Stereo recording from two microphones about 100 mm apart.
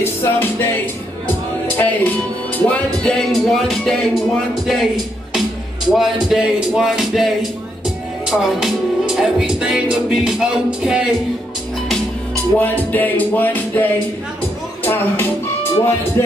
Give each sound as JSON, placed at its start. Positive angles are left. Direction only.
{"t": 0.0, "sound": "music", "side_deg": 20}
{"t": 1.8, "sound": "music", "side_deg": 15}
{"t": 3.3, "sound": "music", "side_deg": 0}
{"t": 4.6, "sound": "a man's voice", "side_deg": 0}
{"t": 5.9, "sound": "music", "side_deg": 0}
{"t": 12.5, "sound": "music", "side_deg": 20}
{"t": 14.8, "sound": "speech", "side_deg": 20}